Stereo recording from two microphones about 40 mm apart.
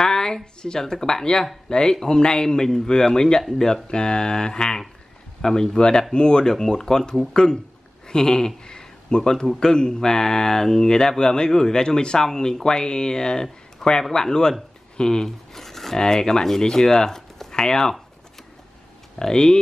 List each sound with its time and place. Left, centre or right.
0.0 s speech: centre
19.1 s speech: centre